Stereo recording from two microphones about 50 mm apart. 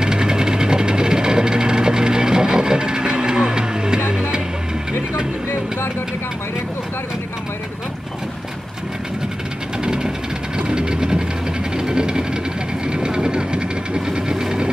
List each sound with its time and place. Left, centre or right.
0.0 s vehicle: centre
4.1 s music: centre
10.7 s vehicle: centre
11.7 s sewing machine: centre
12.8 s vehicle: centre